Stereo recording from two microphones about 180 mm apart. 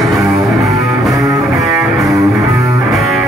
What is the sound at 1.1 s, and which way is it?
Music, 20° right (ahead or behind).